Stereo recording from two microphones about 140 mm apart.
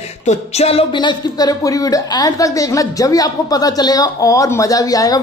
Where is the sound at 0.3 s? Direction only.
45° left (ahead or behind).